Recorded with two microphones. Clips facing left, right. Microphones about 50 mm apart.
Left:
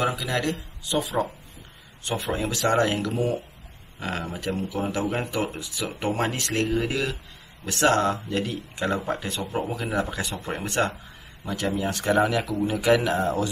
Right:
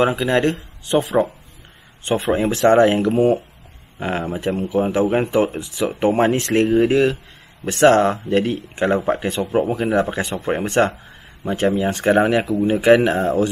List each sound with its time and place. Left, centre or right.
0.0 s speech: right